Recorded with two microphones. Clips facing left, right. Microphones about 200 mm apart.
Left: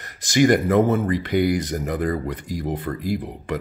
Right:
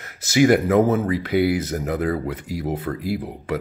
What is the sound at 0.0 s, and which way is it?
Speech, 5° right (ahead or behind).